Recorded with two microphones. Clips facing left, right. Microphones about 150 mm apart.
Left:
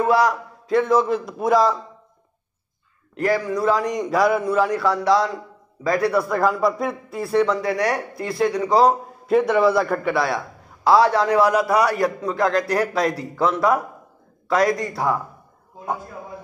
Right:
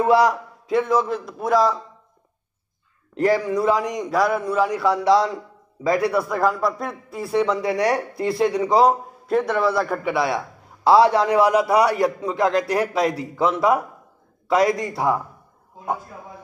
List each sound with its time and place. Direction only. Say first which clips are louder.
0.0 s a man's voice: right 1 dB; 25° right (ahead or behind)
0.7 s a man's voice: left 2 dB; 5° right (ahead or behind)
3.2 s a man's voice: right 2 dB; 25° right (ahead or behind)
3.8 s a man's voice: left 2 dB; centre (ahead or behind)
4.7 s speech: right 1 dB; 15° right (ahead or behind)
5.0 s a man's voice: right 1 dB; 25° right (ahead or behind)
6.2 s a man's voice: left 1 dB; centre (ahead or behind)
7.2 s speech: left 1 dB; 10° right (ahead or behind)
7.6 s a man's voice: right 1 dB; 25° right (ahead or behind)
9.3 s a man's voice: left 3 dB; 5° left (ahead or behind)
10.1 s a man's voice: even; 20° right (ahead or behind)